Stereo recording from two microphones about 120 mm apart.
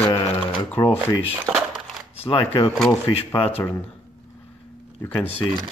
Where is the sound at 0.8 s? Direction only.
35° left (ahead or behind).